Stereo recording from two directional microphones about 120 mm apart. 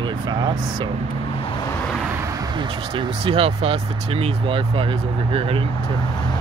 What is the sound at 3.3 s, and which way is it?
Speech, 50° right (ahead or behind).